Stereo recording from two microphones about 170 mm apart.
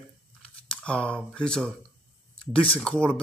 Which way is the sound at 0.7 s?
5° left (ahead or behind).